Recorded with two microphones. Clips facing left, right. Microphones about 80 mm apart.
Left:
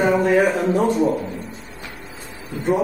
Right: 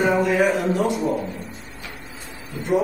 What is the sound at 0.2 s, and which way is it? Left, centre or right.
Speech, left.